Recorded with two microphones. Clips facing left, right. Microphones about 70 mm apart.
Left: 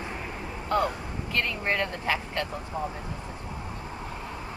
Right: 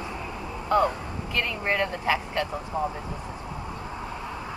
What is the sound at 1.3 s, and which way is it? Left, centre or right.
Speech, centre.